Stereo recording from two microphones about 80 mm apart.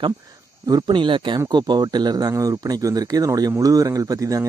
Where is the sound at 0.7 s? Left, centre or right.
Right.